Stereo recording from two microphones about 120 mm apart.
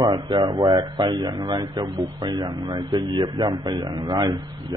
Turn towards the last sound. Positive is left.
turn(degrees=-35)  # may be behind; listen again after turning